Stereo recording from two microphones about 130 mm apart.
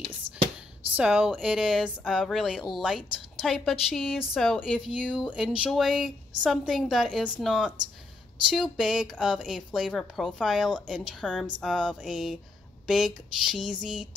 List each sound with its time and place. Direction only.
0.3 s whispering: 45° right (ahead or behind)
0.9 s speech: 5° right (ahead or behind)
4.7 s speech: 5° right (ahead or behind)